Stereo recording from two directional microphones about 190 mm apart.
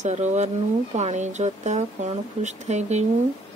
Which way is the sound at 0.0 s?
40° right (ahead or behind).